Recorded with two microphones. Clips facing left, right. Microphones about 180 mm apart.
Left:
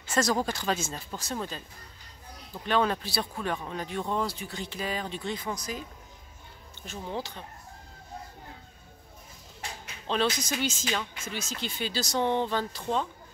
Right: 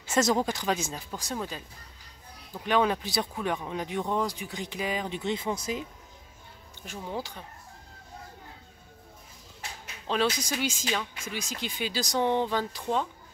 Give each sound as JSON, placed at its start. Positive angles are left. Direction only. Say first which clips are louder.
{"t": 0.1, "sound": "speech", "louder": "right 2 dB", "side_deg": -20}
{"t": 6.8, "sound": "speech", "louder": "even", "side_deg": -10}
{"t": 10.0, "sound": "speech", "louder": "even", "side_deg": -10}